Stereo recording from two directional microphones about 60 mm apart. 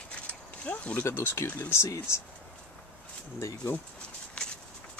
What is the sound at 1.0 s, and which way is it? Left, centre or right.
Speech, left.